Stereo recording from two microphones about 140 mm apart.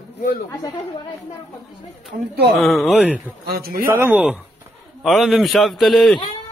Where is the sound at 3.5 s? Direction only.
90° right.